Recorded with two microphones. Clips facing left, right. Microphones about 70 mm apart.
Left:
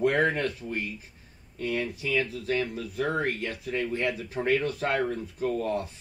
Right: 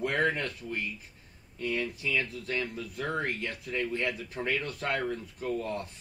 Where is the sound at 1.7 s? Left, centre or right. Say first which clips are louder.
Left 2 dB; centre.